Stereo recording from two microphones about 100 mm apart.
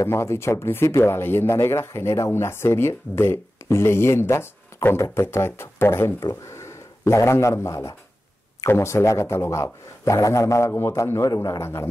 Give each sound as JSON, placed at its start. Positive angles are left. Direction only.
{"t": 0.0, "sound": "speech", "side_deg": 30}